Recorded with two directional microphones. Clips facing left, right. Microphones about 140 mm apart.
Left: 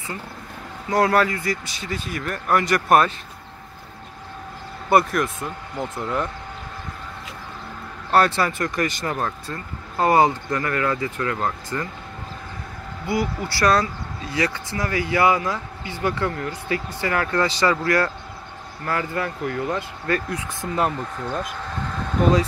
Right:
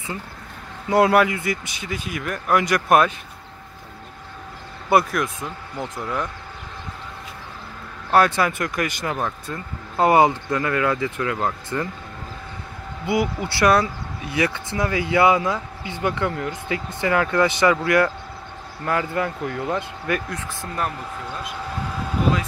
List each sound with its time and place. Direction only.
0.8 s speech: 20° right (ahead or behind)
4.8 s speech: centre (ahead or behind)
8.1 s speech: 10° right (ahead or behind)
9.9 s speech: 20° right (ahead or behind)
13.0 s speech: 20° right (ahead or behind)
21.5 s vehicle: 10° right (ahead or behind)